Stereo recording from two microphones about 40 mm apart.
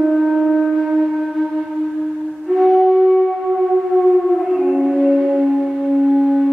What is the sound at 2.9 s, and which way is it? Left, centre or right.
Wind instrument, centre.